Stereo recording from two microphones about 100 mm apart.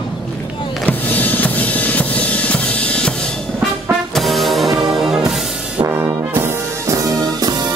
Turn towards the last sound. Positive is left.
turn(degrees=-40)  # may be behind; listen again after turning